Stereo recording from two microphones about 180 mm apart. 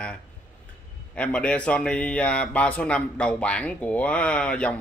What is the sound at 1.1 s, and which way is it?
Speech, 5° left (ahead or behind).